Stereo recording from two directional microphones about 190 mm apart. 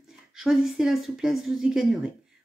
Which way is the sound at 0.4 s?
5° right (ahead or behind).